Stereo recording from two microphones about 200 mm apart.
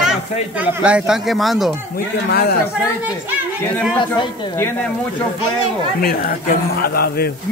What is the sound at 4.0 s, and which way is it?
Speech, 25° left (ahead or behind).